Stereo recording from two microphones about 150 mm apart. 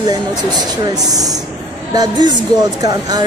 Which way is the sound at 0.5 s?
25° right (ahead or behind).